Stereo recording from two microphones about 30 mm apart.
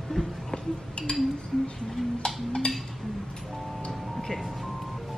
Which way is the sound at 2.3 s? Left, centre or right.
Centre.